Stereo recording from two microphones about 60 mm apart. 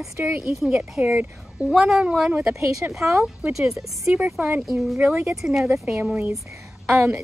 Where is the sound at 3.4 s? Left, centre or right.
Centre.